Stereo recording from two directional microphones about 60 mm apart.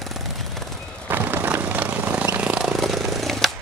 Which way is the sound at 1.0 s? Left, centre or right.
Right.